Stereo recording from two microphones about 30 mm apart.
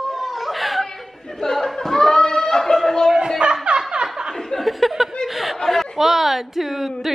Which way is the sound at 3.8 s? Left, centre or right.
Right.